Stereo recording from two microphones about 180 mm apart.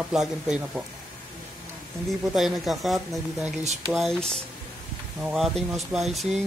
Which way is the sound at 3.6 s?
40° right (ahead or behind).